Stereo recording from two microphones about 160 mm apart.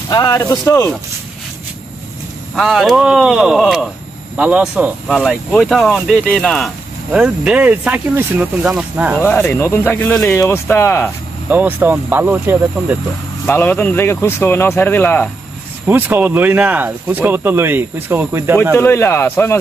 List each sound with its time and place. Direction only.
0.1 s speech: 20° left (ahead or behind)
2.5 s speech: centre (ahead or behind)
5.1 s speech: 5° left (ahead or behind)
7.1 s speech: 5° right (ahead or behind)
9.5 s speech: 15° left (ahead or behind)
11.4 s speech: 10° right (ahead or behind)
13.5 s speech: 10° left (ahead or behind)
15.9 s speech: 10° right (ahead or behind)
18.8 s speech: 15° left (ahead or behind)